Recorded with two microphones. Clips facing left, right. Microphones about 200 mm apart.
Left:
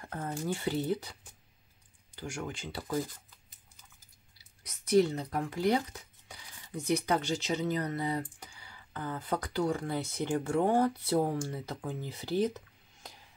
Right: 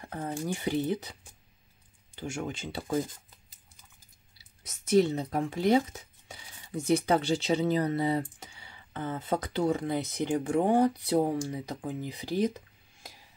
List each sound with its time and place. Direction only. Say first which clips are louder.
0.0 s speech: right 2 dB; 10° right (ahead or behind)
2.1 s speech: right 4 dB; 25° right (ahead or behind)
4.6 s speech: right 2 dB; 25° right (ahead or behind)